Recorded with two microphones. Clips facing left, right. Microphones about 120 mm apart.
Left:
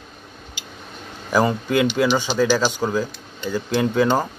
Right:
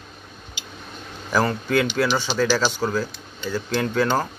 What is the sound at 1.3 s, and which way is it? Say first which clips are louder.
Speech: left 2 dB; 10° left (ahead or behind).